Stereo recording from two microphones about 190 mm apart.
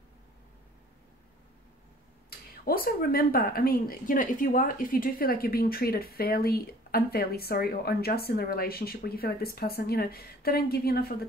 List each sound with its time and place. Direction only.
2.2 s speech: 50° left (ahead or behind)